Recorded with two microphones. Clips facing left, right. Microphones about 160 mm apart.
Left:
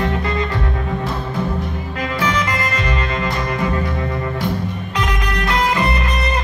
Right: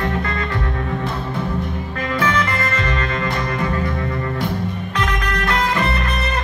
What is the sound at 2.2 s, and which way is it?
Music, 15° left (ahead or behind).